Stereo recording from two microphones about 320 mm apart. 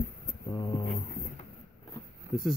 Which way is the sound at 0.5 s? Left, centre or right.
Centre.